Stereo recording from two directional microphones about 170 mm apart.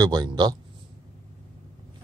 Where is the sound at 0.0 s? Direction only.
25° right (ahead or behind).